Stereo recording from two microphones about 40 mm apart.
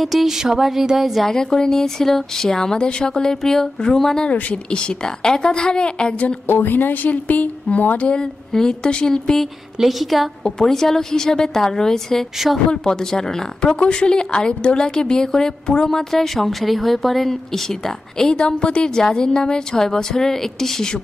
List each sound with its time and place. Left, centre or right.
0.0 s a sound: centre
1.2 s a woman's voice: centre
4.6 s a woman's voice: left
6.4 s speech: left
8.5 s a woman's voice: left
9.8 s a sound: centre
10.4 s a woman's voice: centre
13.7 s a woman's voice: left